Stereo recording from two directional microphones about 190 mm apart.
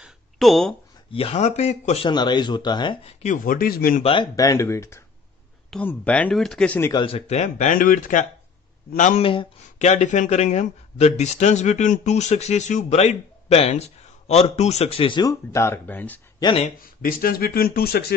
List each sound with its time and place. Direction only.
0.0 s a sound: centre (ahead or behind)
1.1 s speech: 35° left (ahead or behind)
2.0 s speech: 25° left (ahead or behind); by 4.0 s 50° left (ahead or behind)
4.0 s speech: 25° left (ahead or behind); by 6.9 s 5° left (ahead or behind)
6.9 s speech: 25° left (ahead or behind); by 16.2 s 10° left (ahead or behind)
16.8 s speech: 50° left (ahead or behind)